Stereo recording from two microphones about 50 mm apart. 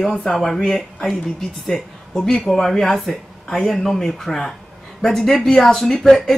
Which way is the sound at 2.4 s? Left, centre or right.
Centre.